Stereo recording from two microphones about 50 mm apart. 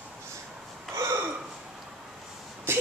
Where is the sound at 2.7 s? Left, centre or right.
Right.